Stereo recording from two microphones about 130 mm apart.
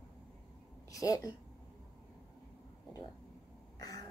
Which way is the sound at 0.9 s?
25° left (ahead or behind).